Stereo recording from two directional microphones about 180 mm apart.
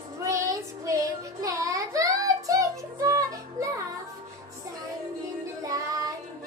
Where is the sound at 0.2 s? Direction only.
15° right (ahead or behind).